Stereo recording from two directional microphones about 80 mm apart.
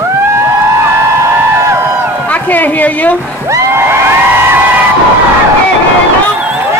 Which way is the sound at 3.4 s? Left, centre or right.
Right.